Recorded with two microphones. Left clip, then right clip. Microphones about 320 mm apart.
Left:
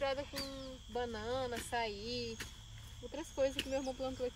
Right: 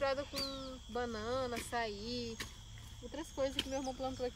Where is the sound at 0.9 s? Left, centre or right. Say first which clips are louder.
Even; left.